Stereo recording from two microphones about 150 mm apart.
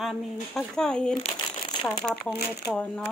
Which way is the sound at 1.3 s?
35° left (ahead or behind).